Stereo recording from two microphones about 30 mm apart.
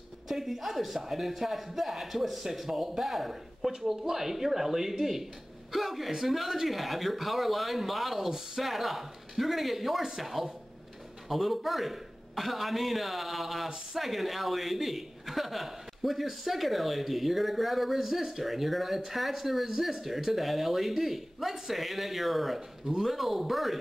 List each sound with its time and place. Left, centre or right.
0.3 s a man's voice: centre